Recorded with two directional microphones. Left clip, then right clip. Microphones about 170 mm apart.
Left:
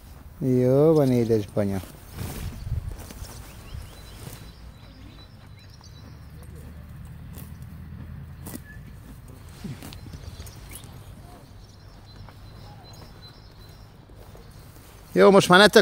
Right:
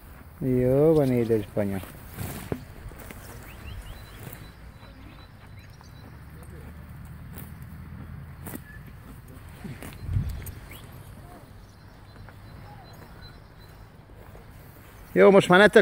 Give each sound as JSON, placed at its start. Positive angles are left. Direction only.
{"t": 0.5, "sound": "speech", "side_deg": 20}
{"t": 2.2, "sound": "boat", "side_deg": -60}
{"t": 8.5, "sound": "vehicle", "side_deg": -10}
{"t": 15.1, "sound": "speech", "side_deg": 10}